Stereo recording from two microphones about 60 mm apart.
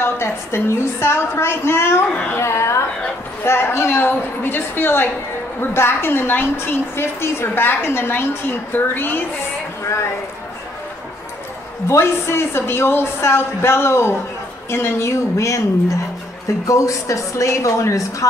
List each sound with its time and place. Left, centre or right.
0.0 s a man's voice: left
11.9 s a man's voice: left
16.6 s speech: left